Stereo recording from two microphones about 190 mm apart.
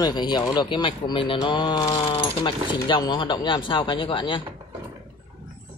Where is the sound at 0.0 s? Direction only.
20° left (ahead or behind).